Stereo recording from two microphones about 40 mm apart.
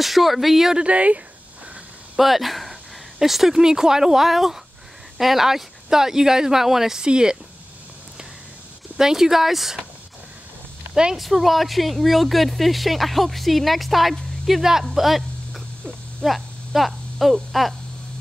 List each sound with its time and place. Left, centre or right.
0.0 s speech: centre
0.7 s speech: right
2.1 s speech: centre
8.9 s speech: centre
11.1 s speech: centre
15.0 s a sound: centre
16.3 s speech: centre